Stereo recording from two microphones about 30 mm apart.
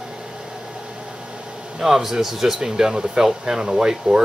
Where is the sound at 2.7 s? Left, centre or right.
Right.